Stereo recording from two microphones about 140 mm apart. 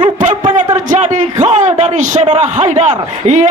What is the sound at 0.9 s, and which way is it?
A man's voice, 60° right (ahead or behind).